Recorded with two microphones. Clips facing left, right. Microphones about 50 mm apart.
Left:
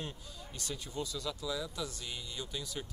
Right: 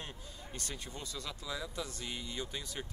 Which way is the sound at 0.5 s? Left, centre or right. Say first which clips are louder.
Left 5 dB; right.